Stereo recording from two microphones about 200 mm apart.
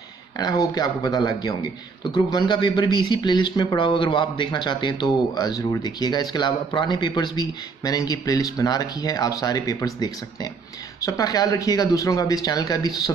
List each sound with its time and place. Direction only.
0.4 s a man's voice: 20° left (ahead or behind)